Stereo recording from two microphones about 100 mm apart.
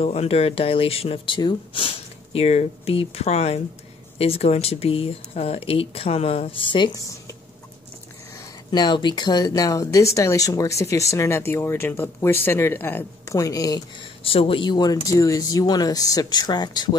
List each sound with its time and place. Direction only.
0.0 s speech: 90° left
8.7 s speech: 50° left (ahead or behind); by 13.0 s 20° left (ahead or behind)
13.3 s speech: 35° left (ahead or behind)
14.2 s speech: 65° left (ahead or behind); by 15.0 s 45° left (ahead or behind)
15.0 s speech: 35° left (ahead or behind)